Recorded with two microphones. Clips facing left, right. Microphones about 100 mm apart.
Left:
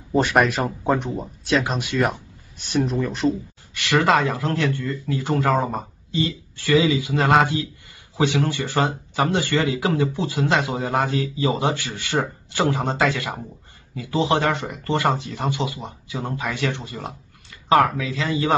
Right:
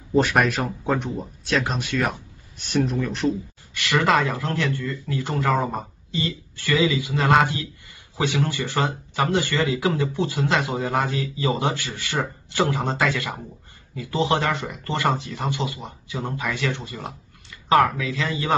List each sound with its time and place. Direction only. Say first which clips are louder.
0.2 s speech: left 2 dB; 5° left (ahead or behind)
3.9 s a man's voice: left 2 dB; 30° left (ahead or behind)